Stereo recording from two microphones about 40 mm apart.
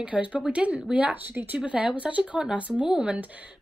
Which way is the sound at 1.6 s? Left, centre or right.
Right.